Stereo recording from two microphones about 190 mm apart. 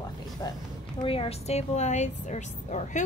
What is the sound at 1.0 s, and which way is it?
A woman's voice, 30° left (ahead or behind).